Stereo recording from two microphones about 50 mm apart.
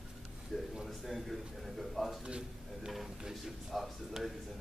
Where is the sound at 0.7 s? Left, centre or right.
Centre.